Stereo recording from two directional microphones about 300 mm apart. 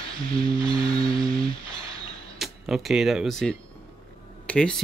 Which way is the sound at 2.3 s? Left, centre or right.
Centre.